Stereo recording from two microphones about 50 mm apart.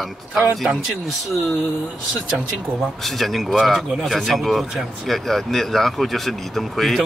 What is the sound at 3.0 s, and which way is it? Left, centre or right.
Speech, centre.